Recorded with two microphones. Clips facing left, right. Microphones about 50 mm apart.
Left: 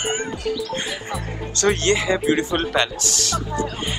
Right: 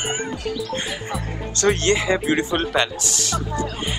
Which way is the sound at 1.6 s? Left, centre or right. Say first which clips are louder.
Even; right.